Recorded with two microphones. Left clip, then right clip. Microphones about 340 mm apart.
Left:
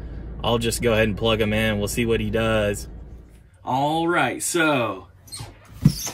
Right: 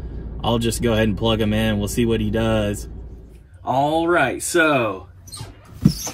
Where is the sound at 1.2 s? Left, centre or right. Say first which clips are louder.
Even; left.